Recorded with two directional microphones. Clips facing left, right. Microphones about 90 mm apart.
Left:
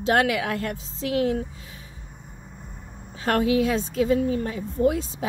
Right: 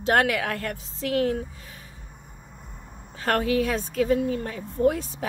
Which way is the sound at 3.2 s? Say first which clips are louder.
Left 2 dB; 20° left (ahead or behind).